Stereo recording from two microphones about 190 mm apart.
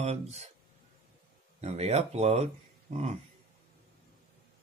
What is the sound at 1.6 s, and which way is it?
Speech, 35° right (ahead or behind).